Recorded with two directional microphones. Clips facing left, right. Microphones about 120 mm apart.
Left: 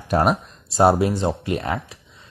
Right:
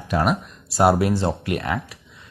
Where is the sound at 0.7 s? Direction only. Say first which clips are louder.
Left 1 dB; 25° left (ahead or behind).